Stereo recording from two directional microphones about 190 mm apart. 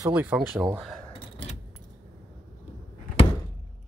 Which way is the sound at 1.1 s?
30° left (ahead or behind).